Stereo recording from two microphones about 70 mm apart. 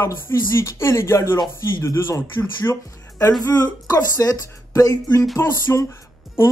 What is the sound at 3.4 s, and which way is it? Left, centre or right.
Speech, left.